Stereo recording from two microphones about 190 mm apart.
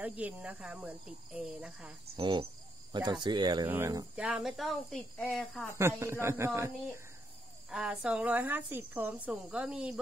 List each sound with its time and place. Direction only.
0.0 s a woman's voice: 5° right (ahead or behind)
2.1 s a woman's voice: 25° right (ahead or behind); by 5.8 s 5° left (ahead or behind)
5.8 s a woman's voice: 15° right (ahead or behind)